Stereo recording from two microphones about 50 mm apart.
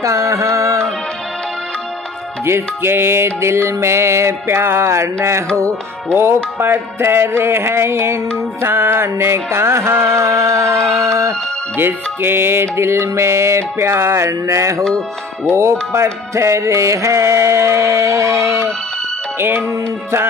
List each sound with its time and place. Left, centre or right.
0.0 s music: right
2.4 s music: right
6.1 s music: right
11.8 s music: right
15.5 s music: right